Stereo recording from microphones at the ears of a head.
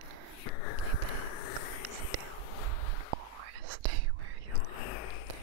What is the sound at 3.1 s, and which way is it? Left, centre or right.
Whispering, right.